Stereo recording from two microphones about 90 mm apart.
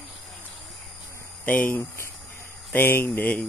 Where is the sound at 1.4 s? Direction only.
20° left (ahead or behind).